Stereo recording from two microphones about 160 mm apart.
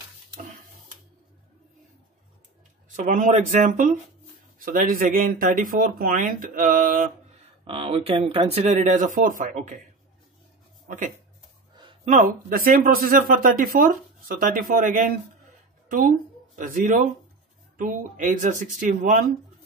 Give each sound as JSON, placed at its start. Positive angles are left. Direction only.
{"t": 3.0, "sound": "a man's voice", "side_deg": -55}
{"t": 4.6, "sound": "speech", "side_deg": -60}
{"t": 7.6, "sound": "speech", "side_deg": -35}
{"t": 8.7, "sound": "a man's voice", "side_deg": -50}
{"t": 12.0, "sound": "speech", "side_deg": -50}